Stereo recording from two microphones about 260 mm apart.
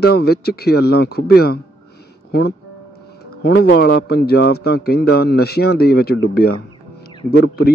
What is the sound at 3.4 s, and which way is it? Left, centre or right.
Speech, left.